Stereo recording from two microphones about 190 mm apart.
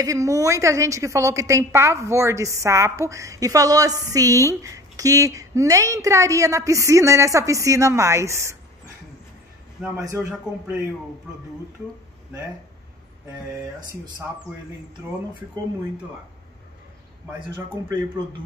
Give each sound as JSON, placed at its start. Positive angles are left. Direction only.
{"t": 0.0, "sound": "a woman's voice", "side_deg": -15}
{"t": 10.0, "sound": "a woman's voice", "side_deg": -10}
{"t": 17.8, "sound": "a woman's voice", "side_deg": -20}